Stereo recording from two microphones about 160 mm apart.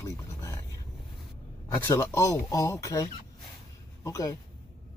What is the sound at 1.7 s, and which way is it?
Speech, 20° left (ahead or behind).